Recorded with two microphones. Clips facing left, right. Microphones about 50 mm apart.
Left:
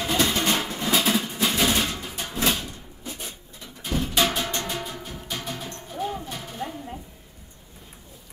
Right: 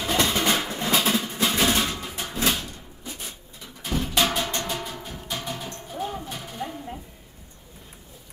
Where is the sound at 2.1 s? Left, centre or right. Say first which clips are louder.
Even; right.